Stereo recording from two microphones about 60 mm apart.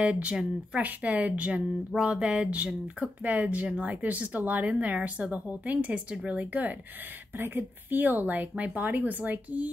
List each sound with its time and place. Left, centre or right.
0.0 s speech: centre
2.0 s speech: centre